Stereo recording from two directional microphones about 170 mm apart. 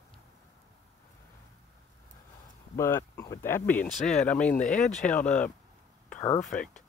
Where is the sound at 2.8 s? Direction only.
15° left (ahead or behind).